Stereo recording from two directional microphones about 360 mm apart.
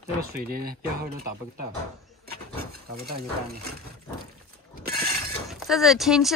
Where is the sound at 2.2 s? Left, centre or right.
Right.